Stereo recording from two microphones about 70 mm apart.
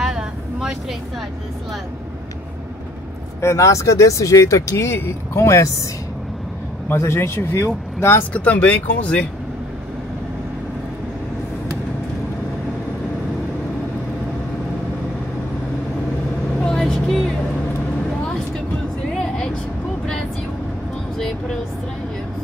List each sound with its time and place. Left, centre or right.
0.0 s vehicle: centre
3.3 s speech: left
6.9 s speech: left
8.3 s speech: left
16.6 s vehicle: centre
19.1 s vehicle: centre